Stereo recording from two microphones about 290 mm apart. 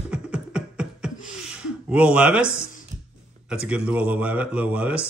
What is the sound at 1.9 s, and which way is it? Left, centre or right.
Speech, centre.